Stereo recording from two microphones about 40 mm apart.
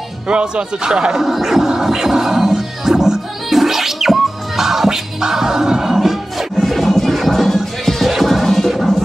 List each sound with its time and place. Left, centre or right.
0.3 s speech: right
1.2 s music: centre